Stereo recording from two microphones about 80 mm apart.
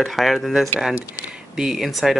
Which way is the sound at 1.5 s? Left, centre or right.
Centre.